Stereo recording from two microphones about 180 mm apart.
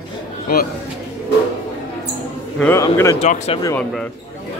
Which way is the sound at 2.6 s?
15° left (ahead or behind).